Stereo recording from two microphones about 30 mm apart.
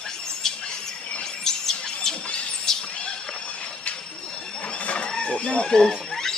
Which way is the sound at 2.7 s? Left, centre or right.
Centre.